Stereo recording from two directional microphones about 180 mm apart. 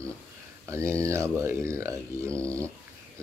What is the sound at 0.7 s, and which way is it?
Speech, 15° right (ahead or behind).